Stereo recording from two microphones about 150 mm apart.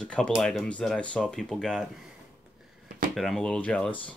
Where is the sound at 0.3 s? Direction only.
Centre (ahead or behind).